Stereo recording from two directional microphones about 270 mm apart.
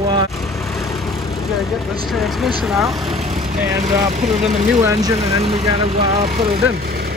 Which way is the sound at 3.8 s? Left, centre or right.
Right.